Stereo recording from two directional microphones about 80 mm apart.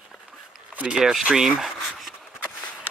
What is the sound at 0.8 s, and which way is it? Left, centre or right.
Speech, centre.